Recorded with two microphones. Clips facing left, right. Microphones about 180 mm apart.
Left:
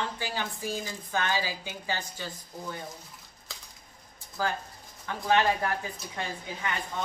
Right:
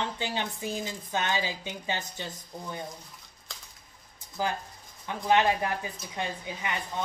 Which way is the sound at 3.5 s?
Centre (ahead or behind).